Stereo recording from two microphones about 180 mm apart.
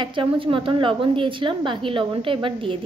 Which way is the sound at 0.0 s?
30° right (ahead or behind).